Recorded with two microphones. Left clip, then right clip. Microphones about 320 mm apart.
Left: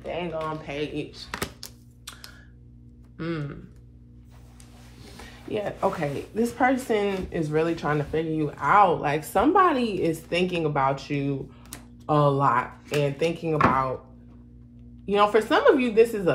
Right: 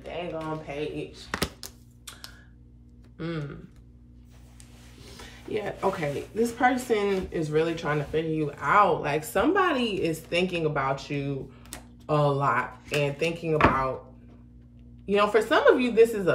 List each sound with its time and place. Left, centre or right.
0.1 s speech: centre
1.3 s thunk: centre
3.2 s speech: centre
5.1 s music: centre
6.3 s speech: centre
15.0 s speech: centre